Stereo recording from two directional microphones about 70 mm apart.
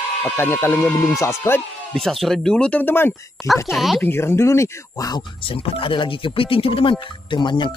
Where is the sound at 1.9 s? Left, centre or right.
Centre.